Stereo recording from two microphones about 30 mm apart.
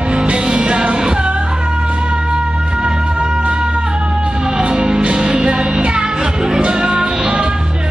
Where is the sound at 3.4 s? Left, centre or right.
Right.